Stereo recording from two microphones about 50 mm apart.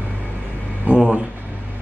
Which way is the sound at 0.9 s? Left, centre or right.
Right.